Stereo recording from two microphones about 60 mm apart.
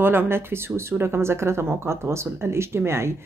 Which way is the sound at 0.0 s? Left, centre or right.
Right.